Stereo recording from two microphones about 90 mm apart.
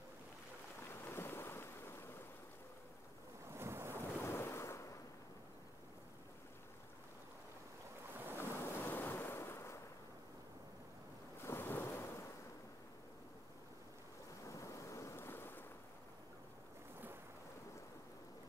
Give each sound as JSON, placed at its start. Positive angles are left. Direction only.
{"t": 1.0, "sound": "ocean", "side_deg": 25}
{"t": 3.4, "sound": "waves", "side_deg": -30}
{"t": 3.9, "sound": "ocean", "side_deg": 25}
{"t": 8.1, "sound": "waves", "side_deg": -20}
{"t": 8.4, "sound": "waves", "side_deg": 25}
{"t": 11.4, "sound": "waves", "side_deg": 25}
{"t": 14.4, "sound": "ocean", "side_deg": 35}